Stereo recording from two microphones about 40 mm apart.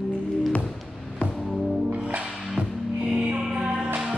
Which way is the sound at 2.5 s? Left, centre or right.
Right.